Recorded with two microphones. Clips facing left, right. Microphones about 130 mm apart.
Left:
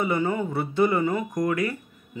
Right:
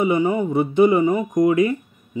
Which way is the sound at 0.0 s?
15° right (ahead or behind).